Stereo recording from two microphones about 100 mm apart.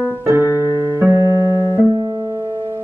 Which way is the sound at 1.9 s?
50° right (ahead or behind).